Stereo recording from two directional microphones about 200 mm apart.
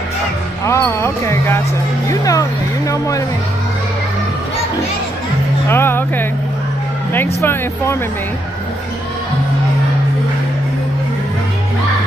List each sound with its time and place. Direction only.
0.7 s speech: 15° left (ahead or behind)
5.7 s speech: 10° left (ahead or behind)
7.4 s speech: 15° left (ahead or behind)